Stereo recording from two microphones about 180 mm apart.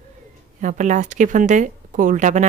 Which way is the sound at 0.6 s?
45° right (ahead or behind).